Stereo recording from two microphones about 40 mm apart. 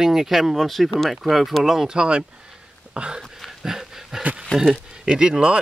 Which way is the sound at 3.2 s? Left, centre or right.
Centre.